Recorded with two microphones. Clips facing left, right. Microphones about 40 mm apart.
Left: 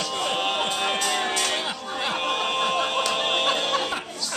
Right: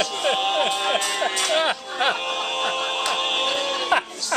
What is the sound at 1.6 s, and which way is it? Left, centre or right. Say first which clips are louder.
Speech: right 6 dB; right.